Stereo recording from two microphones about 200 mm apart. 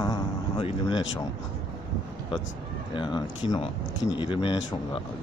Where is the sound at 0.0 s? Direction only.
20° left (ahead or behind).